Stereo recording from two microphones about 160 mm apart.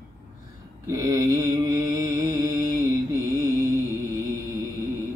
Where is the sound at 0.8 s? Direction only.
20° right (ahead or behind).